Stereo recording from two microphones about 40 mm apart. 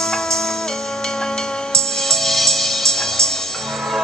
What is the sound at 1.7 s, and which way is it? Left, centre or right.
Music, centre.